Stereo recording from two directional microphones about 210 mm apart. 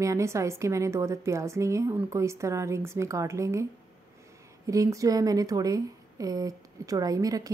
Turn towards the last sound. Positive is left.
turn(degrees=-15)  # may be behind; listen again after turning